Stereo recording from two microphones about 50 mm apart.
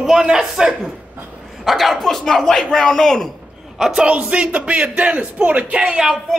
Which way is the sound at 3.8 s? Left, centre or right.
Centre.